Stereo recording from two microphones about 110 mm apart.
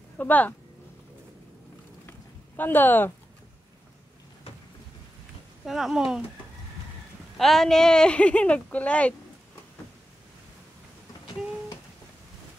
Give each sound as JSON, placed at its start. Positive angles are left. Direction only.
{"t": 0.2, "sound": "speech", "side_deg": 15}
{"t": 2.0, "sound": "a sound", "side_deg": 15}
{"t": 5.7, "sound": "speech", "side_deg": 0}
{"t": 7.3, "sound": "speech", "side_deg": 0}